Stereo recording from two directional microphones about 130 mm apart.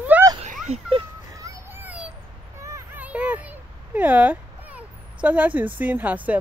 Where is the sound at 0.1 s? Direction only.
10° right (ahead or behind).